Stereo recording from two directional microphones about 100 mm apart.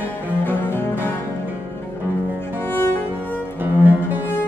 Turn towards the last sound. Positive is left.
turn(degrees=-20)  # may be behind; listen again after turning